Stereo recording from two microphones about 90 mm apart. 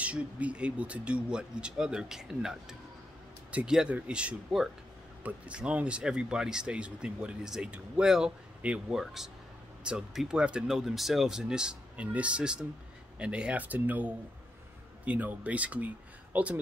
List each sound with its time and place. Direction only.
0.0 s speech: 15° right (ahead or behind)
3.5 s speech: 10° right (ahead or behind)